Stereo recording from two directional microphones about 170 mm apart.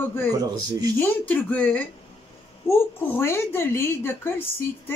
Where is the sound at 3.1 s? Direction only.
15° left (ahead or behind).